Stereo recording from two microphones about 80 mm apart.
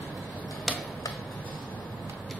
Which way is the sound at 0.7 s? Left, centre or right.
Centre.